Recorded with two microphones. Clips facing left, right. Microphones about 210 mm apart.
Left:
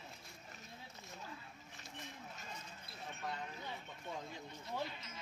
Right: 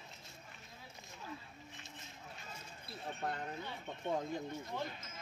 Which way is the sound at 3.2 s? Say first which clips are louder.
Right 4 dB; 55° right (ahead or behind).